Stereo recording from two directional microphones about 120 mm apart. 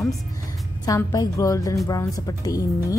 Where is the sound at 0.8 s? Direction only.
30° left (ahead or behind).